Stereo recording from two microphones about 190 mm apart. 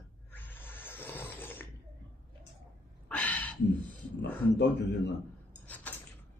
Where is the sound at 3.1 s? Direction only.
10° left (ahead or behind).